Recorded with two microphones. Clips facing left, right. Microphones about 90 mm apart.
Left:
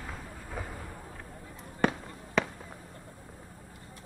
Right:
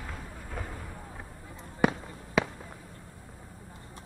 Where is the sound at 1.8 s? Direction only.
10° right (ahead or behind).